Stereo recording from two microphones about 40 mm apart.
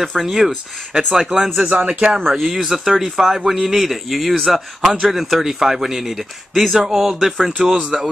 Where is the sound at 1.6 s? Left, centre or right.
Right.